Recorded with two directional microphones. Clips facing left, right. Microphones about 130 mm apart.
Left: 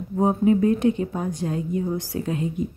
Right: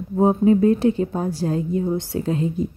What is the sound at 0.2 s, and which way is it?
Speech, 30° right (ahead or behind).